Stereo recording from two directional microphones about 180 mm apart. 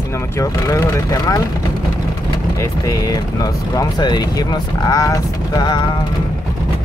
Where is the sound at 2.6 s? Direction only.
20° left (ahead or behind).